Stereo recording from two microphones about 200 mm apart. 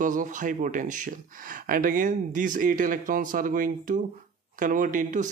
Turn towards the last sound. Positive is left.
turn(degrees=-40)  # may be behind; listen again after turning